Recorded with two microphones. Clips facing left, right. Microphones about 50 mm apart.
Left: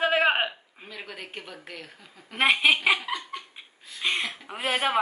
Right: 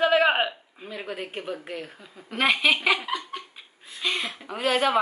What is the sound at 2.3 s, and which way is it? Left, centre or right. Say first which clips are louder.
Speech: even; centre.